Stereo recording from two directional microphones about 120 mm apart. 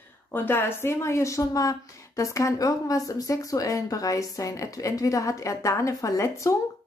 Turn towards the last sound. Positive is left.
turn(degrees=25)  # may be behind; listen again after turning